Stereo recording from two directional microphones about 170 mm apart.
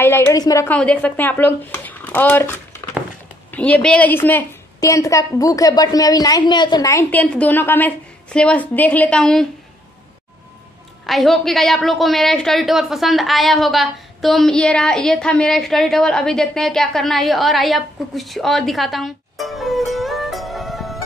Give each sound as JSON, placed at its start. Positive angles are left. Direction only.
{"t": 0.0, "sound": "a woman's voice", "side_deg": 15}
{"t": 0.7, "sound": "a woman's voice", "side_deg": 5}
{"t": 11.1, "sound": "a woman's voice", "side_deg": 0}